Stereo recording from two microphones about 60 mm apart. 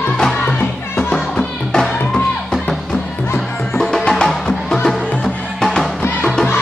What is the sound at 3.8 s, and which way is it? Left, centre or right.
Music, centre.